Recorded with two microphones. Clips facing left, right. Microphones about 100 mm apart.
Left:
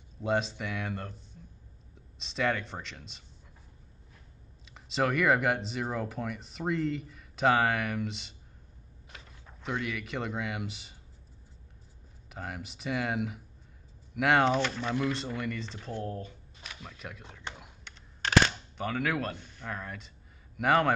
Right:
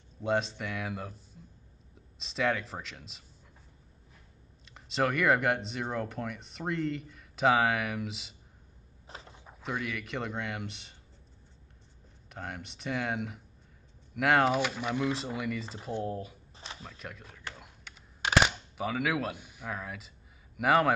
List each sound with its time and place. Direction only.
0.2 s speech: centre (ahead or behind)
2.1 s speech: centre (ahead or behind)
4.6 s speech: centre (ahead or behind)
9.0 s a sound: 30° right (ahead or behind)
9.6 s speech: centre (ahead or behind)
12.3 s speech: centre (ahead or behind)
17.6 s computer keyboard: 5° left (ahead or behind)
18.2 s speech: 10° right (ahead or behind)